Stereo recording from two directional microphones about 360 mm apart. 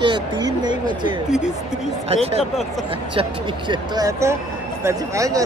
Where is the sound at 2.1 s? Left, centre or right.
Centre.